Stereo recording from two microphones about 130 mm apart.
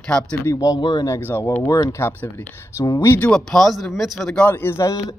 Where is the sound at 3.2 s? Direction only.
5° left (ahead or behind).